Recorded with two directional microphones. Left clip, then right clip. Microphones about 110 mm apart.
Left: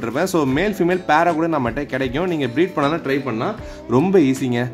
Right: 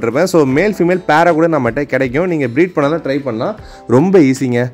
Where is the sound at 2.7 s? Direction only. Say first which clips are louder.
Right 5 dB; 10° right (ahead or behind).